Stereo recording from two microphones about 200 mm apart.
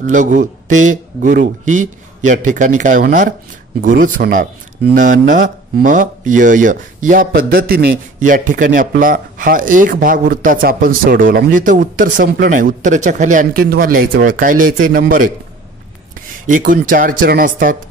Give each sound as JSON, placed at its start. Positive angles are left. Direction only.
{"t": 0.0, "sound": "speech", "side_deg": -40}
{"t": 16.4, "sound": "speech", "side_deg": -40}